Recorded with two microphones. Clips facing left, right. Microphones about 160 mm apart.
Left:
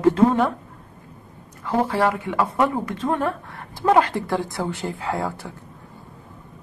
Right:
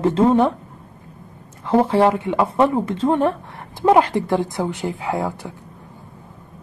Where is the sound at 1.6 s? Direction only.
25° right (ahead or behind).